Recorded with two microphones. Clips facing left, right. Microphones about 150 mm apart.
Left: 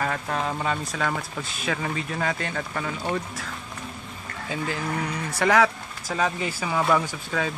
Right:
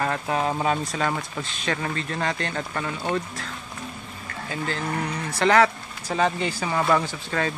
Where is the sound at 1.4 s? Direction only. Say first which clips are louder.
Even; 10° left (ahead or behind).